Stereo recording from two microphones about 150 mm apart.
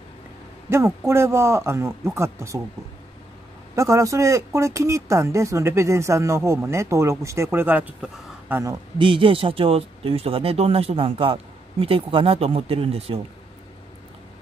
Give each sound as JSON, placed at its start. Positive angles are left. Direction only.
{"t": 0.7, "sound": "speech", "side_deg": -20}
{"t": 3.7, "sound": "speech", "side_deg": -20}
{"t": 8.9, "sound": "speech", "side_deg": -35}